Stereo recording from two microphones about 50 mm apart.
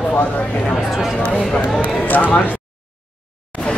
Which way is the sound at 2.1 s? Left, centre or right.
Left.